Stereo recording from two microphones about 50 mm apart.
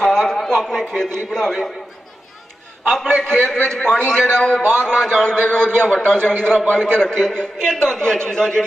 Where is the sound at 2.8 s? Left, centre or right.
Centre.